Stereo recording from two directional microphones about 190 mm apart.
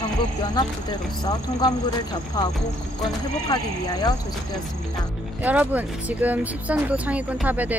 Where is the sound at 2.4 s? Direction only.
20° left (ahead or behind).